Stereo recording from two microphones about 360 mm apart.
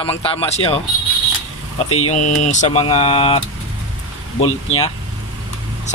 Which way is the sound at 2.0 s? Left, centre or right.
Centre.